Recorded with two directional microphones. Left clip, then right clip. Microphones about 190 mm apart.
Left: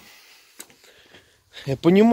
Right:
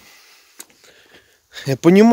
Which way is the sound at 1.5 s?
35° right (ahead or behind).